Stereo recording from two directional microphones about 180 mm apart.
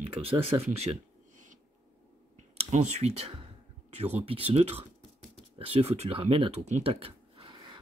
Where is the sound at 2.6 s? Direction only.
40° right (ahead or behind).